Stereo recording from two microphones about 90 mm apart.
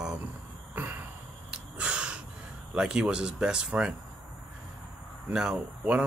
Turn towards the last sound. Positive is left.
turn(degrees=-15)  # may be behind; listen again after turning